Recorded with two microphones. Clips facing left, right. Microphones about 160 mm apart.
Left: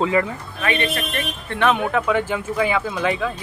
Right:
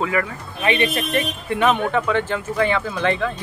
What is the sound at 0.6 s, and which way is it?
Speech, 20° right (ahead or behind).